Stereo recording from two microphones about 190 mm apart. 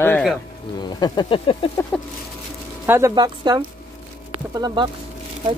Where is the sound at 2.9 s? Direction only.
20° right (ahead or behind).